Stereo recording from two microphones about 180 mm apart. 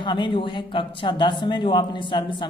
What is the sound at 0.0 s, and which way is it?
Speech, 25° left (ahead or behind).